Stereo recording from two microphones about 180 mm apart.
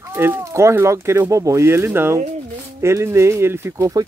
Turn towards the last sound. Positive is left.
turn(degrees=-20)  # may be behind; listen again after turning